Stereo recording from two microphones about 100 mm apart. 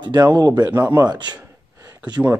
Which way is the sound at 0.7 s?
20° right (ahead or behind).